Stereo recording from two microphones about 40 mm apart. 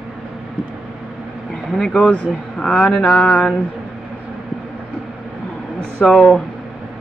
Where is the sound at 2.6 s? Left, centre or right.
Centre.